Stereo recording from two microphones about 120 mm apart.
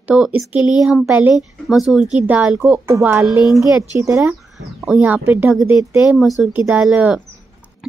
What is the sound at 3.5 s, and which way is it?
Speech, 25° right (ahead or behind).